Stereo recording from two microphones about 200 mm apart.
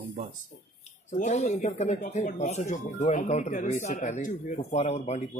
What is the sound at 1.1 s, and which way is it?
Speech, 35° left (ahead or behind).